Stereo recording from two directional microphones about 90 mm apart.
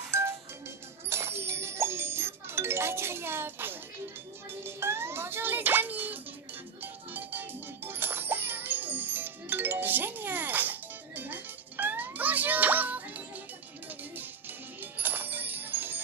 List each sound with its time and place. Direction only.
0.1 s music: 30° right (ahead or behind)
4.6 s a child's voice: 30° right (ahead or behind)
6.8 s music: 20° right (ahead or behind)
14.8 s music: 20° right (ahead or behind)